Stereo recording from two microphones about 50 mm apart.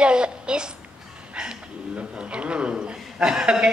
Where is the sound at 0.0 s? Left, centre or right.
Centre.